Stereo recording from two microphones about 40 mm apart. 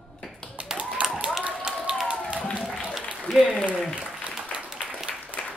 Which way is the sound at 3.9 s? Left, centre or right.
Right.